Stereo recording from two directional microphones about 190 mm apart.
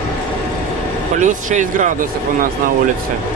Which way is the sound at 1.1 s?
40° right (ahead or behind).